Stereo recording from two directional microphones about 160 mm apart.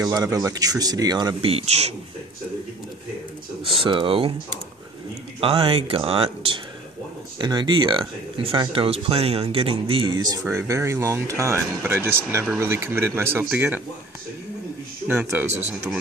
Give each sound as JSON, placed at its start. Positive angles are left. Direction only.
{"t": 0.0, "sound": "speech", "side_deg": -20}
{"t": 3.7, "sound": "speech", "side_deg": -30}
{"t": 5.4, "sound": "speech", "side_deg": -35}
{"t": 15.0, "sound": "speech", "side_deg": -15}